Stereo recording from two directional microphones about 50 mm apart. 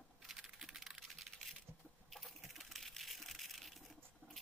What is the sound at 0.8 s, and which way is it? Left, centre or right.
Typing, centre.